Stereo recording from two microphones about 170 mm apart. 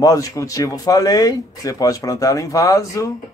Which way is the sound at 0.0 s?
20° left (ahead or behind).